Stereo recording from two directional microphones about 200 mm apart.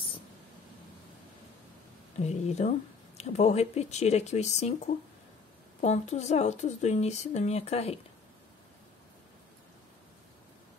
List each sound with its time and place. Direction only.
2.1 s speech: 35° left (ahead or behind)
5.8 s speech: 35° left (ahead or behind)